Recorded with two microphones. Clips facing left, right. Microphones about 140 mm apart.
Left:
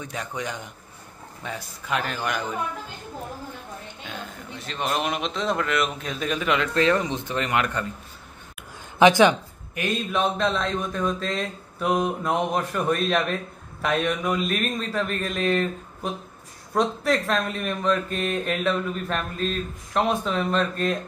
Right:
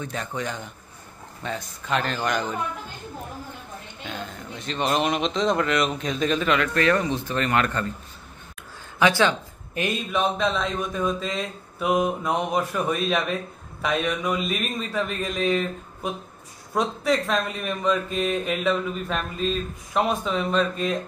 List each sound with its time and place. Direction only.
0.0 s a man's voice: 10° left (ahead or behind)
4.6 s a man's voice: 5° left (ahead or behind)
9.0 s a man's voice: 15° left (ahead or behind)
10.1 s speech: centre (ahead or behind)